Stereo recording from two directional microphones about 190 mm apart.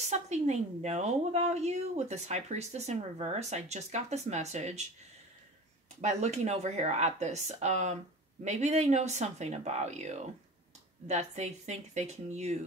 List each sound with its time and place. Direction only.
0.0 s speech: 35° right (ahead or behind)
5.9 s speech: 35° right (ahead or behind)